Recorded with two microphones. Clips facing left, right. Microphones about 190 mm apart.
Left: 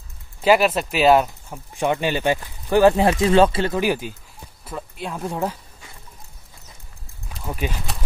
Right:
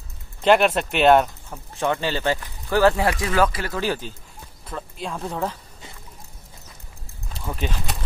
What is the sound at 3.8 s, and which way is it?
Speech, 15° left (ahead or behind).